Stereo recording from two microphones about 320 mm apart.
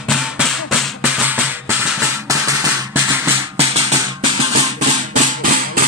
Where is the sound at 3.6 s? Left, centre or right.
Centre.